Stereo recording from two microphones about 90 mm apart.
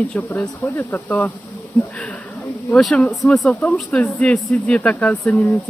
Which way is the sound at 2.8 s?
5° left (ahead or behind).